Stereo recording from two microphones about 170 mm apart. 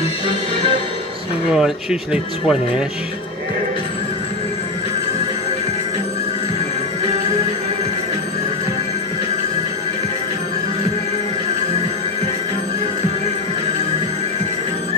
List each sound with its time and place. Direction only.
1.5 s speech: 5° right (ahead or behind)